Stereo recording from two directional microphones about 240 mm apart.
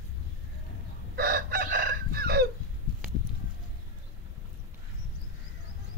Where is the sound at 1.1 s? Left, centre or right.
Right.